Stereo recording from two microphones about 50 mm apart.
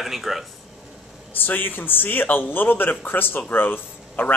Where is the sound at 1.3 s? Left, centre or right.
Left.